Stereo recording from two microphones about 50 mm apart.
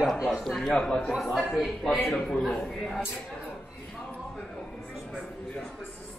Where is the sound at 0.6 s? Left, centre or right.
Centre.